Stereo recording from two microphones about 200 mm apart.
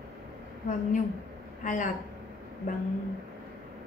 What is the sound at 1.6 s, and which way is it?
Speech, 40° left (ahead or behind).